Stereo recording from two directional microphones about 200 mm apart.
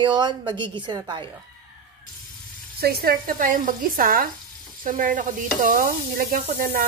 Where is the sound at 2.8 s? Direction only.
50° right (ahead or behind).